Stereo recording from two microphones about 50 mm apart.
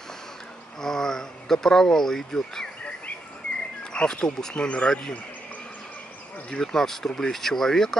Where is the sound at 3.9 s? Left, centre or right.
Centre.